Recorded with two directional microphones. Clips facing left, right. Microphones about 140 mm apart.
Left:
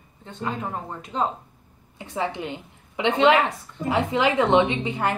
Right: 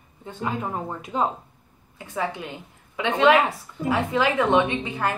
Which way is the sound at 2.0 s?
20° left (ahead or behind).